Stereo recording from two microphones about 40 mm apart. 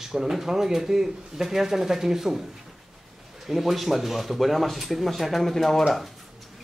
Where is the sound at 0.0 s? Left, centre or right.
Centre.